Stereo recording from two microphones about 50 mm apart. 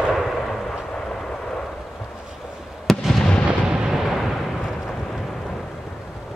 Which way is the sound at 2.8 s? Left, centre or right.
Centre.